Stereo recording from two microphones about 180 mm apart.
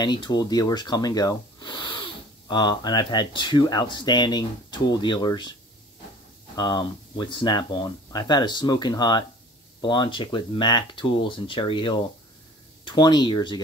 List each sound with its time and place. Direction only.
0.0 s speech: 25° left (ahead or behind)
6.5 s speech: 25° left (ahead or behind)